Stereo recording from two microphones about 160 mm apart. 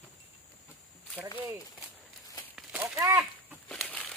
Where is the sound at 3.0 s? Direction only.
20° right (ahead or behind).